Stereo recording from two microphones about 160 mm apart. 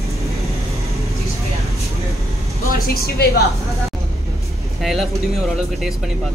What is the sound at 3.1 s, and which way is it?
Speech, 80° left.